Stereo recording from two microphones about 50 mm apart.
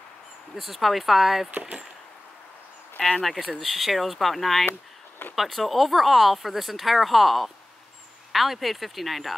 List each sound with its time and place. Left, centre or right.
0.6 s speech: centre
1.6 s speech: centre
3.2 s speech: centre